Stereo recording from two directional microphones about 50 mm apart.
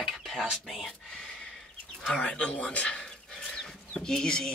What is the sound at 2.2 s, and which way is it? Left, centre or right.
Speech, left.